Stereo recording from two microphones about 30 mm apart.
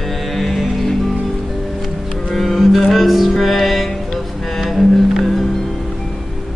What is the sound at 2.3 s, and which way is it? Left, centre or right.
Music, centre.